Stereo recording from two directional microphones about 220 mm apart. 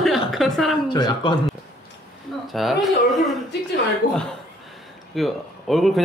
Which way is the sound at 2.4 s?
Centre (ahead or behind).